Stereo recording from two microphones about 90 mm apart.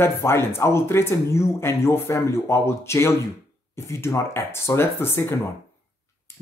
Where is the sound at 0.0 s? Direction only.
30° left (ahead or behind).